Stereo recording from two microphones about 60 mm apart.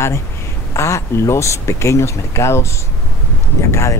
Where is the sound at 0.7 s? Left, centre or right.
Left.